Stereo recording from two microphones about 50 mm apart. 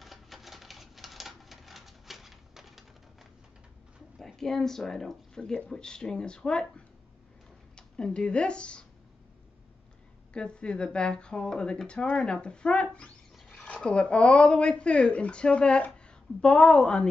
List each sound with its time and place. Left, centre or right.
0.0 s typewriter: centre
4.4 s speech: centre
7.7 s speech: centre
10.3 s speech: centre